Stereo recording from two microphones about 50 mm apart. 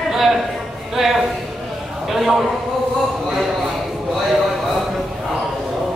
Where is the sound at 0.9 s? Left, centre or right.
Centre.